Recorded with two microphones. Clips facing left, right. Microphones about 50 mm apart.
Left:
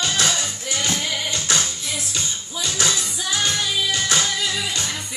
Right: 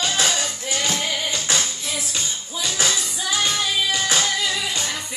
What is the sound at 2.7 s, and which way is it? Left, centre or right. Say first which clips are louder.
Music: left 1 dB; centre.